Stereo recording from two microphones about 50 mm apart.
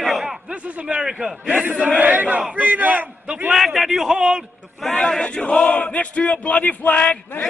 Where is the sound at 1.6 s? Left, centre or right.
Right.